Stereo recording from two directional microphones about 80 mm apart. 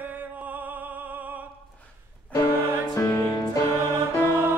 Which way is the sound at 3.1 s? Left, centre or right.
Left.